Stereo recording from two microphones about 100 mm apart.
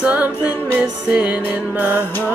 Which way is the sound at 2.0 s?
20° left (ahead or behind).